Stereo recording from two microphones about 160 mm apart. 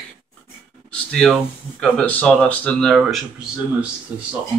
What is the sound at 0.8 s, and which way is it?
Speech, 5° left (ahead or behind).